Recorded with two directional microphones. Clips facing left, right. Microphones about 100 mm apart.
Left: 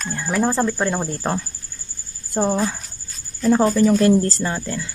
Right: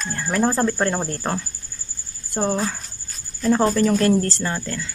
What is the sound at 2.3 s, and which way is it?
Speech, 5° left (ahead or behind).